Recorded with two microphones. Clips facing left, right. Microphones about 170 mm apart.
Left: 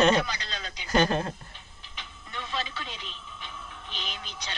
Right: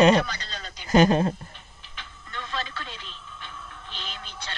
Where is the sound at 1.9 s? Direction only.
20° left (ahead or behind).